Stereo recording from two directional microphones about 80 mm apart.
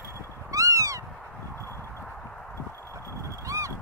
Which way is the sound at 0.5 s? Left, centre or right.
Right.